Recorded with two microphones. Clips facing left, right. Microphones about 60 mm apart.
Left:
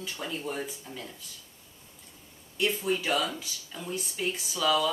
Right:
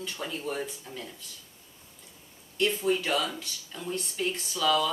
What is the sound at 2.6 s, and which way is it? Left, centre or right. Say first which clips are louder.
Speech: right 2 dB; centre.